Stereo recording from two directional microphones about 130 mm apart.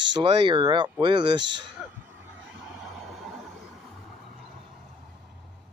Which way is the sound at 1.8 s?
5° right (ahead or behind).